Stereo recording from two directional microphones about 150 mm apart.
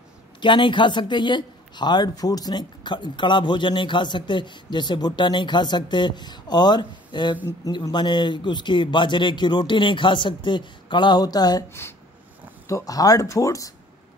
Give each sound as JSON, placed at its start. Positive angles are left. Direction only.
{"t": 0.4, "sound": "speech", "side_deg": 30}